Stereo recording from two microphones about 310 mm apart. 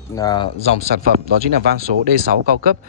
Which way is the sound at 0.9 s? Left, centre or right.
Right.